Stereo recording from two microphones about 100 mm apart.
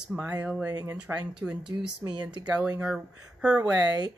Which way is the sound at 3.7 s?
40° right (ahead or behind).